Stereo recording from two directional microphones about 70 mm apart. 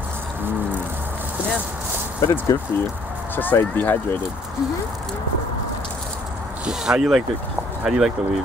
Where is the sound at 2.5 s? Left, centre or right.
Left.